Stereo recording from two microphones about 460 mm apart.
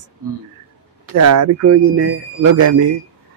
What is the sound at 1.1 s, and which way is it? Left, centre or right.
A man's voice, right.